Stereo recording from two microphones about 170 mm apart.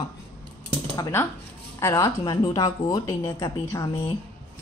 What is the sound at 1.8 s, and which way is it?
Speech, 15° left (ahead or behind).